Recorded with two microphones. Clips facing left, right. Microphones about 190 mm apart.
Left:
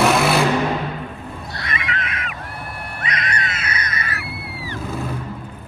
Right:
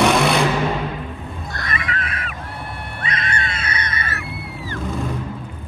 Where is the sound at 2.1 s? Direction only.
30° right (ahead or behind).